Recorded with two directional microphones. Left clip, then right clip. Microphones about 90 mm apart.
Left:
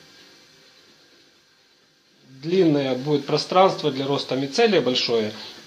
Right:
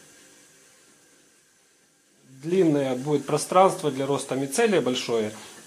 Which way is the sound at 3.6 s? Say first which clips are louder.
Left 2 dB; 30° right (ahead or behind).